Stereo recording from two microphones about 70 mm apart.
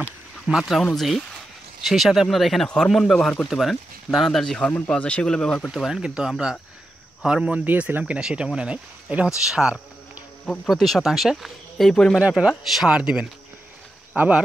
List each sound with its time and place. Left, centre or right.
0.5 s speech: centre
0.9 s speech: centre
5.7 s speech: centre
7.4 s speech: centre
10.4 s speech: centre
10.7 s speech: centre
12.2 s speech: centre
14.1 s speech: right